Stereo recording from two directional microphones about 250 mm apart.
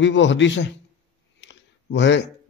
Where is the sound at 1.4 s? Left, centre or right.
Left.